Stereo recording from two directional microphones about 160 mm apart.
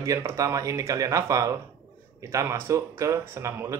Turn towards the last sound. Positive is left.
turn(degrees=-15)  # may be behind; listen again after turning